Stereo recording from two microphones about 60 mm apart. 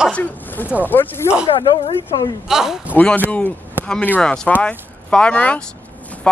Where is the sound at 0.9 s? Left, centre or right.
Left.